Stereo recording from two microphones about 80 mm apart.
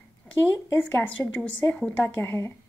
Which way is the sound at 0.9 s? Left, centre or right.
Left.